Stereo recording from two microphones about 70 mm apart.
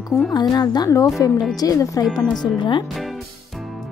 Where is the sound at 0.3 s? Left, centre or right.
Left.